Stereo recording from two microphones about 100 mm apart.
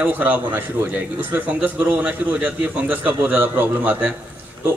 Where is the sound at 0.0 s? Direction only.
20° right (ahead or behind).